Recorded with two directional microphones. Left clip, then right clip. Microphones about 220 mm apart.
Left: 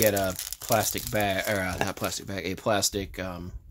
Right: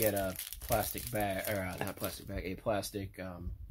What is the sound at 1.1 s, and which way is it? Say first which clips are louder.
Speech: left 8 dB; 40° left (ahead or behind).